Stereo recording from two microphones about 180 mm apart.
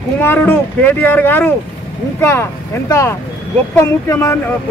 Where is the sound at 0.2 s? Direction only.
10° left (ahead or behind).